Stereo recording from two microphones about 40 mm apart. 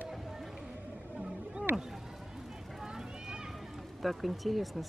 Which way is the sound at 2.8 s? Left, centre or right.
Centre.